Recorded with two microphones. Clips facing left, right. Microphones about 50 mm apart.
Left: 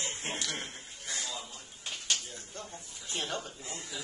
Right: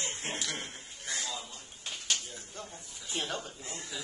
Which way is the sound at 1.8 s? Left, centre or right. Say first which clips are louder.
Even; centre.